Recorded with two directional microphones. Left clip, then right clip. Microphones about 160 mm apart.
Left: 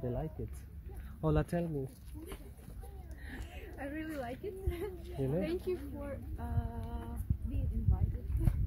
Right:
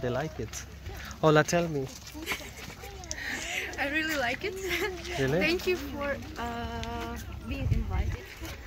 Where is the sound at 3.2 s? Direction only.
10° left (ahead or behind).